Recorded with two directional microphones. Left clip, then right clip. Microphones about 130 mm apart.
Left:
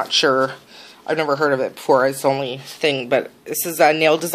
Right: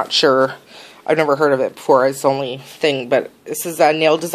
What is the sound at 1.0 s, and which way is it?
Speech, 40° right (ahead or behind).